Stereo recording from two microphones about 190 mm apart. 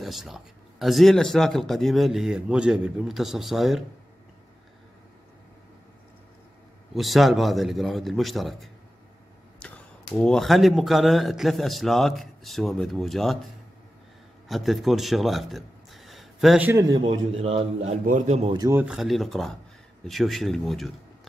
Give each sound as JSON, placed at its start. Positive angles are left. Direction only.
{"t": 0.0, "sound": "speech", "side_deg": 0}
{"t": 6.9, "sound": "speech", "side_deg": 0}
{"t": 10.1, "sound": "speech", "side_deg": 5}
{"t": 14.5, "sound": "speech", "side_deg": 0}
{"t": 16.9, "sound": "a man's voice", "side_deg": -30}
{"t": 18.6, "sound": "speech", "side_deg": -10}